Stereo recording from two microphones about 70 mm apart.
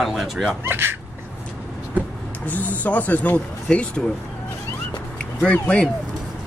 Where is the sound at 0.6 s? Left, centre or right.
Right.